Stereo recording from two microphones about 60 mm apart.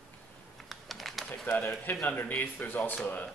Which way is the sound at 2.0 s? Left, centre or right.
Left.